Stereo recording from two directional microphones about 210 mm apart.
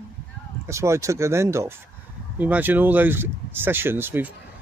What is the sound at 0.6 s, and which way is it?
Speech, 15° right (ahead or behind).